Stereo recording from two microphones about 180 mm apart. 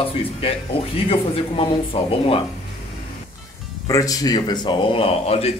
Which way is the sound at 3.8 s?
20° left (ahead or behind).